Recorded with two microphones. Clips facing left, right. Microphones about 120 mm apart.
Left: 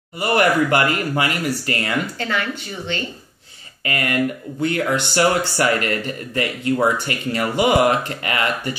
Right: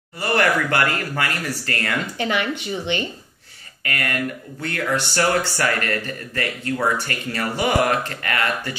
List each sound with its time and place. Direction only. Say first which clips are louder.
0.2 s speech: left 3 dB; 15° left (ahead or behind)
2.1 s speech: right 1 dB; 20° right (ahead or behind)
3.8 s speech: left 4 dB; 20° left (ahead or behind)